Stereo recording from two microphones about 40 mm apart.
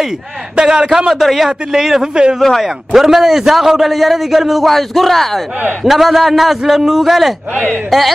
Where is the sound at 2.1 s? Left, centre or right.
Right.